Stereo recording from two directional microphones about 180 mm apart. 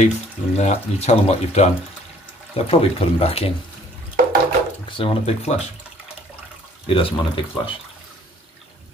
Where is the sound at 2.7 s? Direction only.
30° left (ahead or behind).